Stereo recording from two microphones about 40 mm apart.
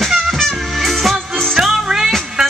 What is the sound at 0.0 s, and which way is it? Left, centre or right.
Music, centre.